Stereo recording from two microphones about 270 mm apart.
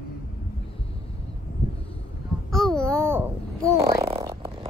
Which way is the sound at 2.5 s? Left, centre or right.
Centre.